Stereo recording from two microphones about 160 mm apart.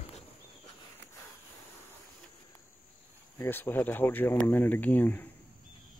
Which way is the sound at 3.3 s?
15° left (ahead or behind).